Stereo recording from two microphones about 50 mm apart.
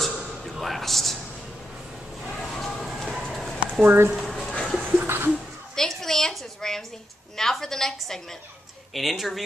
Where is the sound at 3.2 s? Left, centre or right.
Centre.